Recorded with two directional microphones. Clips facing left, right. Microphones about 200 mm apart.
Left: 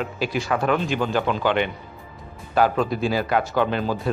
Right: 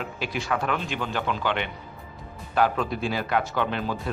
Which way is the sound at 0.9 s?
35° left (ahead or behind).